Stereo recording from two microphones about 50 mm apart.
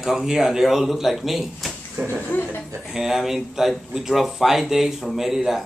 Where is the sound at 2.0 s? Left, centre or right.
Right.